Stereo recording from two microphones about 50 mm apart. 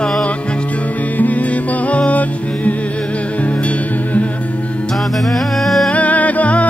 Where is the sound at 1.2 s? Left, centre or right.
Left.